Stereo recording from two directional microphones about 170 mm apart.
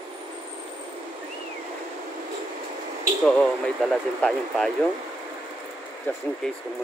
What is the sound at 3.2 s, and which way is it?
Speech, 5° left (ahead or behind).